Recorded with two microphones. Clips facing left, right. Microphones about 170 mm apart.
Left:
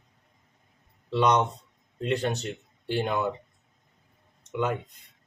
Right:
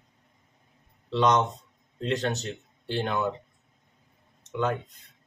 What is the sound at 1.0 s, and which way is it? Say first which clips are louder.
Speech: even; 10° left (ahead or behind).